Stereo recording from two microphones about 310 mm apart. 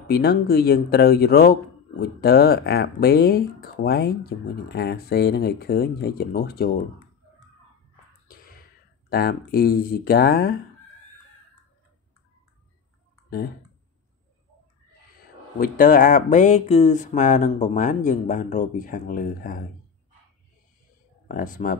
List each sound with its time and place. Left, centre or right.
0.0 s speech: left
8.3 s a sound: left
9.1 s speech: left
15.6 s speech: left
21.3 s speech: left